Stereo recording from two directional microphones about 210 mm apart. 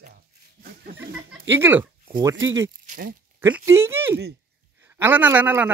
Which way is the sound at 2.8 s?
45° right (ahead or behind).